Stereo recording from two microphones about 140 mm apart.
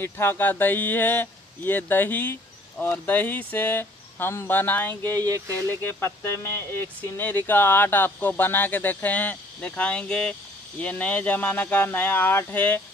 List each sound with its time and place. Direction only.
0.0 s speech: 15° left (ahead or behind)
5.1 s speech: 25° right (ahead or behind)
5.7 s speech: 15° left (ahead or behind)